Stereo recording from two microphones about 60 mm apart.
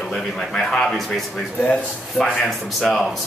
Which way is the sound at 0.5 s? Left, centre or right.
Centre.